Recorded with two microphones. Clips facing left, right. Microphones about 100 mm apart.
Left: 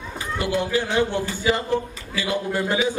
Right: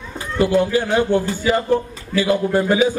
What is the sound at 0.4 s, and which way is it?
A man's voice, 40° right (ahead or behind).